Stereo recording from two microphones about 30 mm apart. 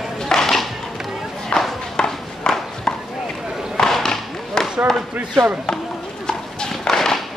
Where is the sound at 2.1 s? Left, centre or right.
Centre.